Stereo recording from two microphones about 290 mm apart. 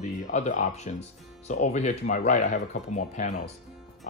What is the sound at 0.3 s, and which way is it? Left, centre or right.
Speech, left.